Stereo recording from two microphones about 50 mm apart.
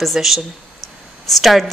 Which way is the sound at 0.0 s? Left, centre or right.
Centre.